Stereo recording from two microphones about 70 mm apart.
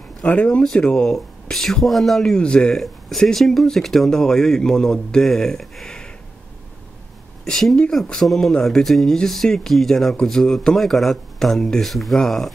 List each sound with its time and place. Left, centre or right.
0.2 s speech: centre
7.4 s speech: centre